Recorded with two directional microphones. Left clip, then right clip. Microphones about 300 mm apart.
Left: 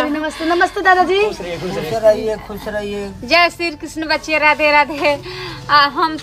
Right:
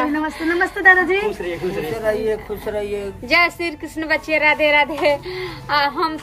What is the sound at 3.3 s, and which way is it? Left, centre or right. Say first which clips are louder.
A woman's voice: left 3 dB; centre.